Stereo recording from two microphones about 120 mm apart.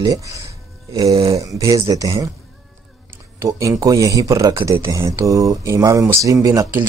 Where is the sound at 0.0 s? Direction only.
30° right (ahead or behind).